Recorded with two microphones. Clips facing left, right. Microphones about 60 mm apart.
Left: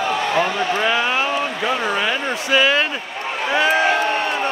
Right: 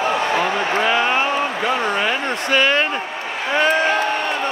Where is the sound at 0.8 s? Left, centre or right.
Centre.